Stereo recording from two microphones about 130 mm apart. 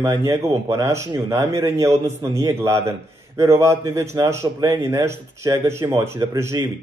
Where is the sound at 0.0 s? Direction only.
25° right (ahead or behind).